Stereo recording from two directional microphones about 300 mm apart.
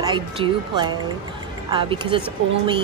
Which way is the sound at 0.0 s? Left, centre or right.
Centre.